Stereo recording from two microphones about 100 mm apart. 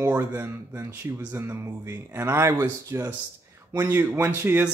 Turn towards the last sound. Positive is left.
turn(degrees=-20)  # may be behind; listen again after turning